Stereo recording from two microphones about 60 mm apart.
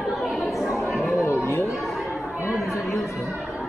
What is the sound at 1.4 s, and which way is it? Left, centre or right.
Chatter, left.